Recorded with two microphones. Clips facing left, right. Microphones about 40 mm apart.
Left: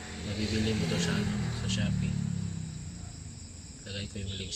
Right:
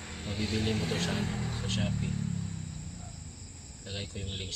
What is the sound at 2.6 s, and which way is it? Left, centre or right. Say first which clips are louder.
Vehicle: left 1 dB; centre.